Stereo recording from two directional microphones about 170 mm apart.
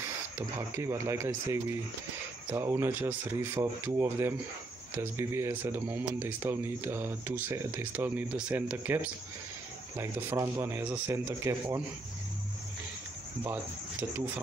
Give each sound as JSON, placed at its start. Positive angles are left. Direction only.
{"t": 0.4, "sound": "speech", "side_deg": -15}